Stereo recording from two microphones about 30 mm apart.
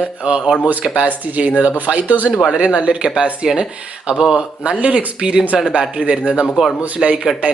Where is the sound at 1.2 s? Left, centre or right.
Right.